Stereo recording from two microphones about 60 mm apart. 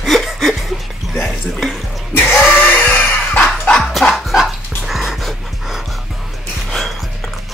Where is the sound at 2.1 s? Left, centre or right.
Left.